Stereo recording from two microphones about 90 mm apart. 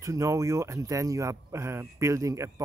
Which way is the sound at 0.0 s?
35° right (ahead or behind).